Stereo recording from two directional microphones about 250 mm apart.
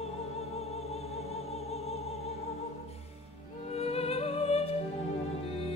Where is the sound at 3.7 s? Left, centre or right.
Left.